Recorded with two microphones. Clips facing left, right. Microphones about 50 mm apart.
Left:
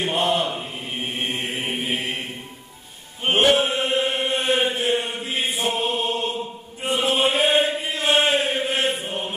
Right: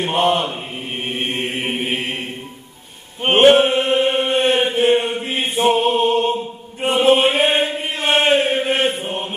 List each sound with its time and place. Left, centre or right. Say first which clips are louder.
0.0 s mantra: right 4 dB; right
3.2 s chant: right 7 dB; right